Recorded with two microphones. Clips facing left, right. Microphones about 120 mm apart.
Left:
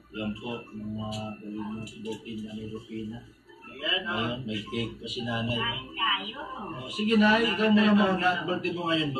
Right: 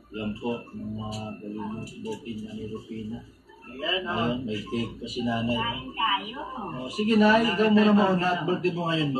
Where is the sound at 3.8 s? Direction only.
35° right (ahead or behind).